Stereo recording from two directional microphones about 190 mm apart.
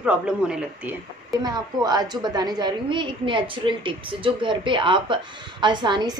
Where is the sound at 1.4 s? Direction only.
20° right (ahead or behind).